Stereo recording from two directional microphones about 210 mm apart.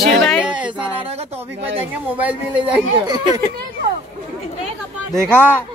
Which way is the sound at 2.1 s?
10° right (ahead or behind).